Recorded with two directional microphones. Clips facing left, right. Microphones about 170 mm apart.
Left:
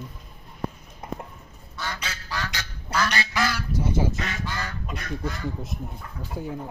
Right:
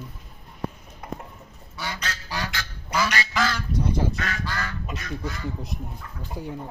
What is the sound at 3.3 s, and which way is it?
Goose, 10° left (ahead or behind).